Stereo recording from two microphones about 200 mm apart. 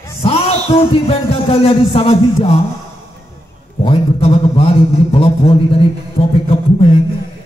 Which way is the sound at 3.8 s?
30° left (ahead or behind).